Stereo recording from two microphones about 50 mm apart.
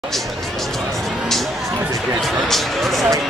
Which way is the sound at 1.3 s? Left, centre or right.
Centre.